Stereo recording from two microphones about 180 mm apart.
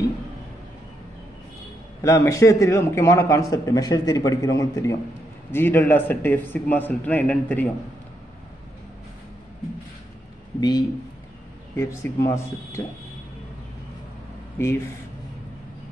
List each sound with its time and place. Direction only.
2.0 s a man's voice: 15° left (ahead or behind)
10.6 s a man's voice: 20° left (ahead or behind)
14.6 s a man's voice: 15° left (ahead or behind)